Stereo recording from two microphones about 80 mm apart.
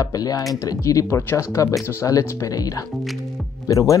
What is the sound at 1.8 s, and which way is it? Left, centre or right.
Speech, left.